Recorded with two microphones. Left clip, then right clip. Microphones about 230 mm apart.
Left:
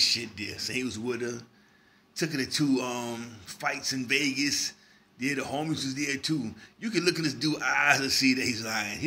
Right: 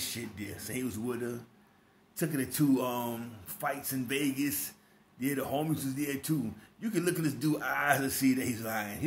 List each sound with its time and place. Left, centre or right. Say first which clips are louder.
0.1 s a man's voice: left 10 dB; centre